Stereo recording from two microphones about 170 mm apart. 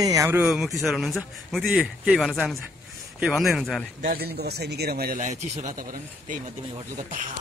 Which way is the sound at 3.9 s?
80° right.